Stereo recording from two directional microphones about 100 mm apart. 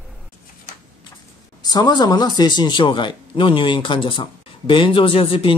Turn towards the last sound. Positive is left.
turn(degrees=65)  # may be behind; listen again after turning